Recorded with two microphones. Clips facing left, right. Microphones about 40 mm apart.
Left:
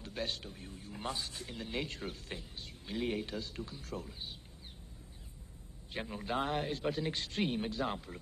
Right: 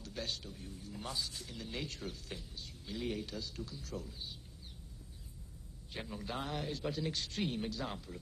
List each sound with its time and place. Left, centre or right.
0.0 s a man's voice: left
5.9 s a man's voice: left